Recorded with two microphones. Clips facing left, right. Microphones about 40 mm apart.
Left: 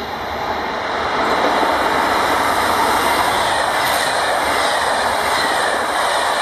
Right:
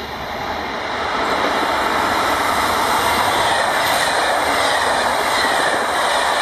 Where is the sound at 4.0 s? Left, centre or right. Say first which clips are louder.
Even; right.